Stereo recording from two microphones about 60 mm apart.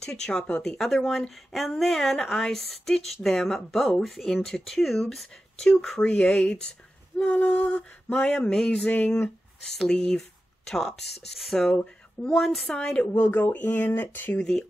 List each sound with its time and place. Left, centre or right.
0.0 s speech: centre
7.2 s a sound: left
8.4 s speech: centre
11.6 s speech: centre
12.4 s speech: centre
12.6 s speech: centre
13.2 s a sound: left
13.8 s speech: left